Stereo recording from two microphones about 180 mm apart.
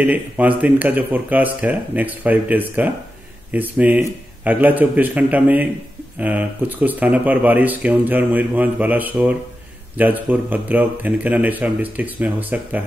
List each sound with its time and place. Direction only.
0.0 s speech: 10° right (ahead or behind)